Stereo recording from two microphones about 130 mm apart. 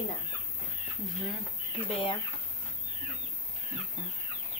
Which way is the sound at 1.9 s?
40° left (ahead or behind).